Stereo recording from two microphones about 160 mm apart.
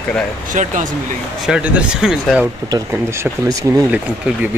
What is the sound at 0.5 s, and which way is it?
Speech, 50° right (ahead or behind).